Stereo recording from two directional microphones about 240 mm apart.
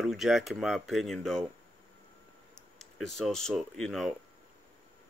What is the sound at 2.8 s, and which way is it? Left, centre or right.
Speech, centre.